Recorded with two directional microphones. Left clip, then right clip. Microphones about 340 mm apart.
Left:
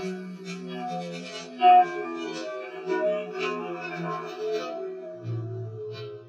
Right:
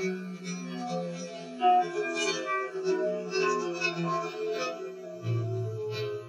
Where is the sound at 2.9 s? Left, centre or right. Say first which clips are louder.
Left 6 dB; left.